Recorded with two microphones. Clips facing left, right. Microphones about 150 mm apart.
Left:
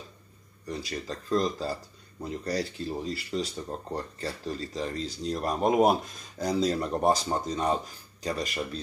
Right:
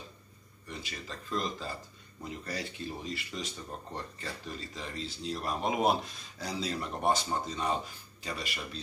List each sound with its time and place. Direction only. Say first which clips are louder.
0.7 s speech: left 8 dB; 35° left (ahead or behind)